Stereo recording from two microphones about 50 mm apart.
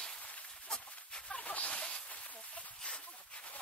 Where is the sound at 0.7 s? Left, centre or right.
Centre.